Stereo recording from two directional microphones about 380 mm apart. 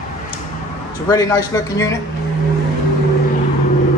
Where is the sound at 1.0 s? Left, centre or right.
Centre.